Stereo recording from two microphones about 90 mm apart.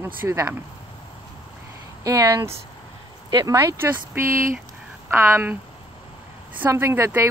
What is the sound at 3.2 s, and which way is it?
Speech, 50° right (ahead or behind).